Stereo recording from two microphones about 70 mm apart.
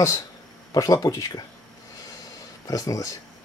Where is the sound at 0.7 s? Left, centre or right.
Left.